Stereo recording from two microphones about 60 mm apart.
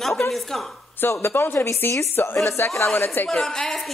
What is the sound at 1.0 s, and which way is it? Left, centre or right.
A woman's voice, left.